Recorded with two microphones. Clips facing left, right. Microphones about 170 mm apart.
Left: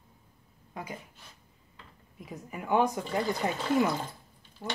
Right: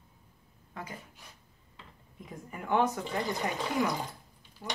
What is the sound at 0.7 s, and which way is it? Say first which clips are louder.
Speech: left 3 dB; 15° left (ahead or behind).